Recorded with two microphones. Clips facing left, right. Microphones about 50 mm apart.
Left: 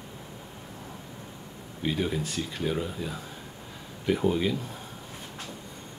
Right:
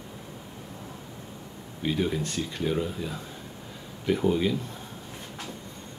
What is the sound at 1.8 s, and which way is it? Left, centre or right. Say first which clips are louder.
Speech: right 1 dB; centre.